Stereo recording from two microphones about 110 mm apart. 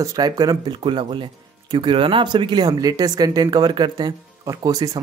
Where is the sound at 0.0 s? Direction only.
35° right (ahead or behind).